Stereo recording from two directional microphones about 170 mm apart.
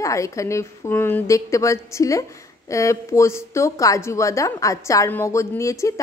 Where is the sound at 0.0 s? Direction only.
20° left (ahead or behind).